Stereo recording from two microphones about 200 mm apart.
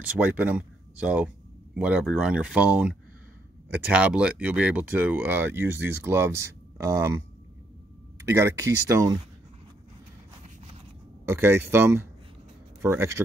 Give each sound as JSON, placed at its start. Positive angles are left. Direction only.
{"t": 0.2, "sound": "speech", "side_deg": -10}
{"t": 8.4, "sound": "speech", "side_deg": -15}
{"t": 11.2, "sound": "speech", "side_deg": -10}